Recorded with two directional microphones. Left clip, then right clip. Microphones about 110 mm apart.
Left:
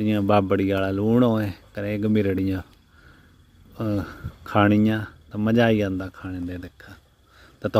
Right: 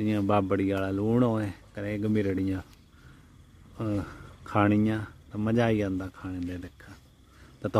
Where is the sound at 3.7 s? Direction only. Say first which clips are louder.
Left 5 dB; 25° left (ahead or behind).